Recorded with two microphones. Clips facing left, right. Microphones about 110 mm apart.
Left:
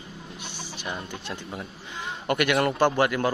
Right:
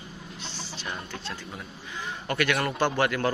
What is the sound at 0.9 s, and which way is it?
Speech, 15° left (ahead or behind).